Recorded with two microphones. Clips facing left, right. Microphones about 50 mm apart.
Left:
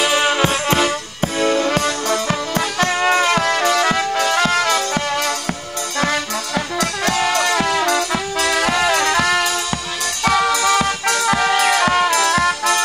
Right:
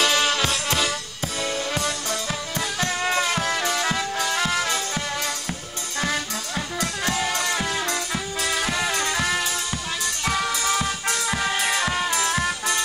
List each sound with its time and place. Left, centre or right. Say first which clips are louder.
0.0 s music: left 5 dB; left
1.4 s music: left 9 dB; left